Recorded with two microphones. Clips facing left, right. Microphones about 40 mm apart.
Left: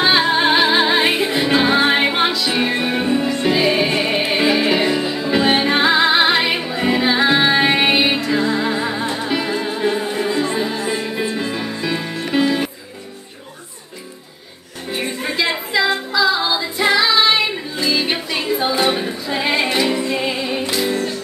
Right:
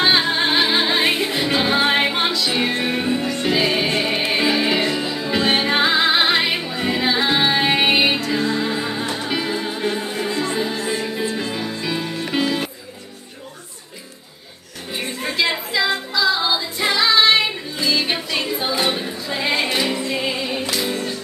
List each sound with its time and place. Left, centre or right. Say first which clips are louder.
0.0 s music: left 3 dB; centre
14.9 s music: left 3 dB; centre